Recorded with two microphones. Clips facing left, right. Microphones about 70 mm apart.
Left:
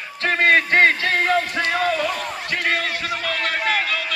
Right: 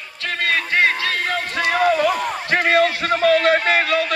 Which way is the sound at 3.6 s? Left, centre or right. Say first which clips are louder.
Right 4 dB; right.